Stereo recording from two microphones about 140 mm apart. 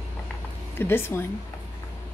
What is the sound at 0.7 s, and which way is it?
Speech, 15° left (ahead or behind).